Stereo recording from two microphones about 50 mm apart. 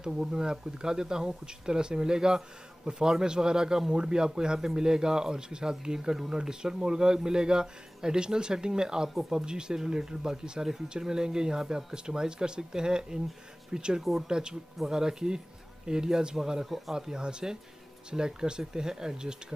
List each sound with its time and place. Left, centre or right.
0.0 s speech: centre
14.0 s speech: centre
14.3 s speech: centre
16.6 s speech: centre
16.9 s speech: centre